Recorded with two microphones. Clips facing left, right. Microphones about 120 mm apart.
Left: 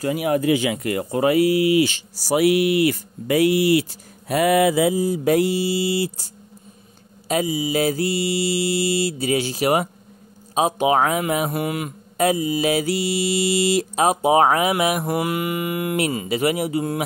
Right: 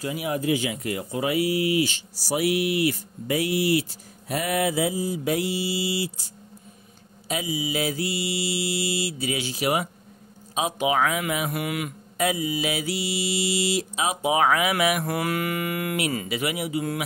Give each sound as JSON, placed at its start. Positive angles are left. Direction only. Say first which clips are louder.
{"t": 0.0, "sound": "speech", "louder": "left 7 dB", "side_deg": 60}
{"t": 5.0, "sound": "mantra", "louder": "left 7 dB", "side_deg": 50}
{"t": 10.5, "sound": "a man's voice", "louder": "left 6 dB", "side_deg": 40}
{"t": 15.0, "sound": "mantra", "louder": "left 4 dB", "side_deg": 20}
{"t": 16.3, "sound": "a man's voice", "louder": "left 7 dB", "side_deg": 35}